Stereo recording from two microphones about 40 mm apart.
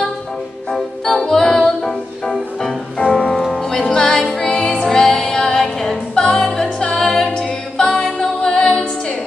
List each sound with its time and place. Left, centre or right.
1.0 s music: centre
4.5 s music: left
4.8 s music: centre
7.2 s a capella: left
8.4 s music: left